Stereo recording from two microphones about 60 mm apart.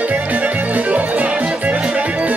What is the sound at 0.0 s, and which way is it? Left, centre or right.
Music, right.